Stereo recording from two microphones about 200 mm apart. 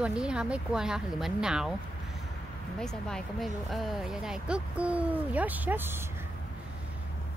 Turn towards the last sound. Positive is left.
turn(degrees=-10)  # may be behind; listen again after turning